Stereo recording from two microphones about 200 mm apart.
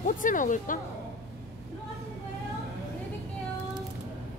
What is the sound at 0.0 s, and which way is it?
Speech, 40° left (ahead or behind).